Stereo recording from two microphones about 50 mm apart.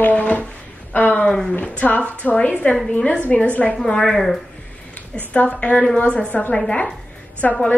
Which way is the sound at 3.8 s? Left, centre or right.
Centre.